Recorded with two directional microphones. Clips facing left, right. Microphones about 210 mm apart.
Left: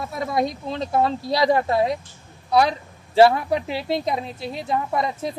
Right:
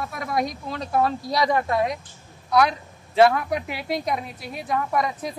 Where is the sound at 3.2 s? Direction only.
30° left (ahead or behind).